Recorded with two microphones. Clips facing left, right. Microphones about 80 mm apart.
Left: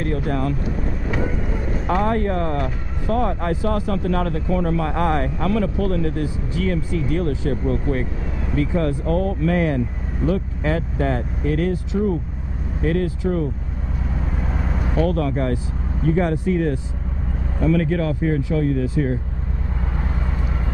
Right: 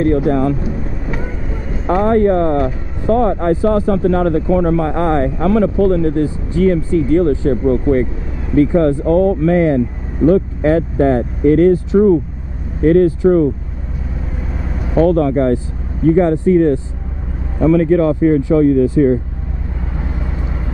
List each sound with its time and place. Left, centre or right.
0.3 s speech: right
0.7 s boat: centre
2.0 s speech: right
15.0 s speech: right